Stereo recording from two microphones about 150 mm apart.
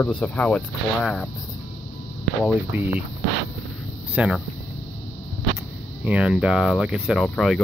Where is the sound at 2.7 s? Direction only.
15° right (ahead or behind).